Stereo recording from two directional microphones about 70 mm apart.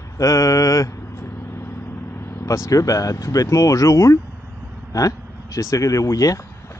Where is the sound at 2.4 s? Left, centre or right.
Left.